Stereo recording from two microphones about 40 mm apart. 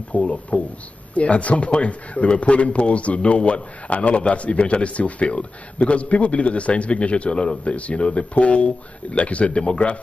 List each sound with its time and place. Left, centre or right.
0.1 s a man's voice: left